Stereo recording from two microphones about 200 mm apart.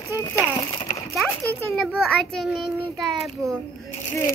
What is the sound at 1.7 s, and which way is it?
A child's voice, centre (ahead or behind).